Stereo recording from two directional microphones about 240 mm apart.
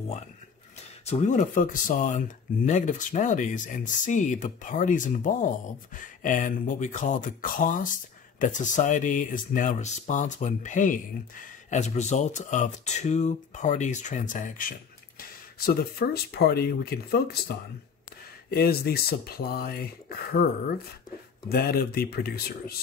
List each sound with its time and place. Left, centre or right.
1.0 s speech: left